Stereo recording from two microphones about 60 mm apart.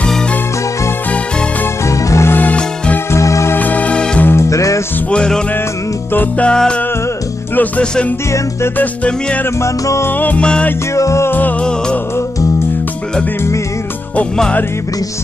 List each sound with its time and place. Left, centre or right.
1.9 s music: left
3.5 s music: left
4.4 s music: left
5.1 s music: centre
7.8 s music: centre
9.6 s music: left
10.0 s music: left
10.4 s music: centre
11.0 s music: left
11.2 s music: left